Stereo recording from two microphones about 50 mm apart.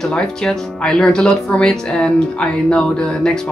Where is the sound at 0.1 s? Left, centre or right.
Centre.